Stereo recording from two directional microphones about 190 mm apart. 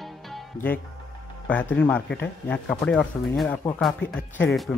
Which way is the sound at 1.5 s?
10° left (ahead or behind).